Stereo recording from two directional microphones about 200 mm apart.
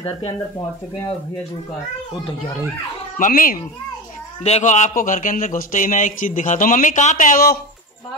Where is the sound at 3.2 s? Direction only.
45° left (ahead or behind).